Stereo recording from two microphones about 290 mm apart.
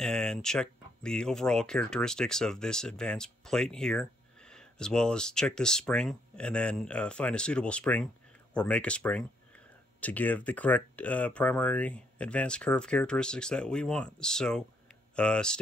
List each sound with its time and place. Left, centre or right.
0.0 s speech: centre